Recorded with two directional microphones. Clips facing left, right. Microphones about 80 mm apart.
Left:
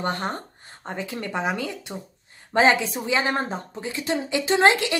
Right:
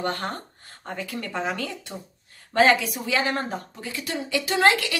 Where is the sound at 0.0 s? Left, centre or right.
Left.